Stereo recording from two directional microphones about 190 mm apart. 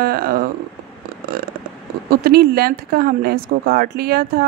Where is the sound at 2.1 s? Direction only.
55° right (ahead or behind).